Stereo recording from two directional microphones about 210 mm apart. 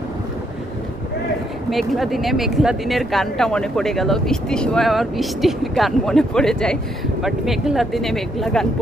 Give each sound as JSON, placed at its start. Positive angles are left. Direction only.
{"t": 1.7, "sound": "speech", "side_deg": 0}